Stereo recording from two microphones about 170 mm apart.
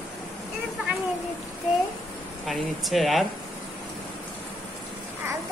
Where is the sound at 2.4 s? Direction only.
Centre (ahead or behind).